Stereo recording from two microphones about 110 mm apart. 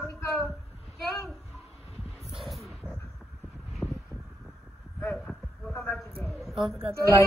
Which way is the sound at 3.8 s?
5° left (ahead or behind).